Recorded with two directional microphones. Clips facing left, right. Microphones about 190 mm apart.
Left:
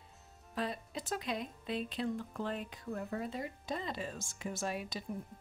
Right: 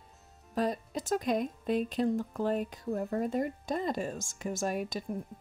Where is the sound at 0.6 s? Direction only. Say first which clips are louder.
Right 7 dB; 45° right (ahead or behind).